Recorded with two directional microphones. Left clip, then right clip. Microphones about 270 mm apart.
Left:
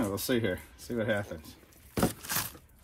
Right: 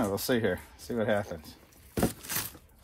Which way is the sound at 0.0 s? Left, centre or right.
Right.